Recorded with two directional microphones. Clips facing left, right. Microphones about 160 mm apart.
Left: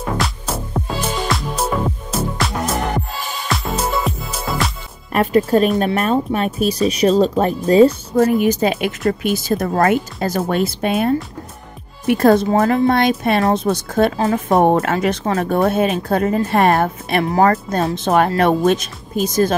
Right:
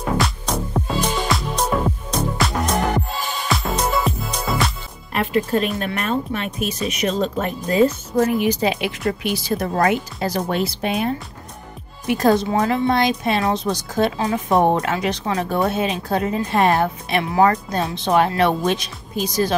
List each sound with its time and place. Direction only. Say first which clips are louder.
0.2 s music: even; centre (ahead or behind)
5.1 s speech: left 5 dB; 40° left (ahead or behind)
12.1 s speech: left 4 dB; 55° left (ahead or behind)